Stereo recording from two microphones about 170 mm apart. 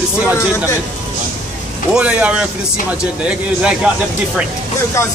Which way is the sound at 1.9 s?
10° right (ahead or behind).